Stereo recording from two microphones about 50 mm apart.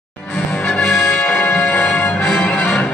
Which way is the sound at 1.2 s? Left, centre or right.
Left.